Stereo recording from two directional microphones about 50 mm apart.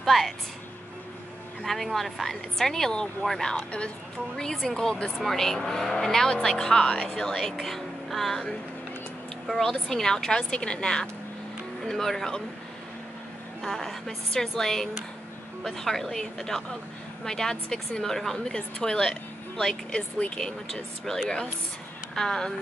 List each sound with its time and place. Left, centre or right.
0.0 s a woman's voice: centre
1.6 s a woman's voice: centre
7.6 s music: centre
9.5 s a woman's voice: centre
13.6 s a woman's voice: centre